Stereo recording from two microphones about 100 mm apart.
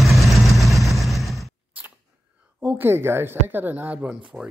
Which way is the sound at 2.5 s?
15° right (ahead or behind).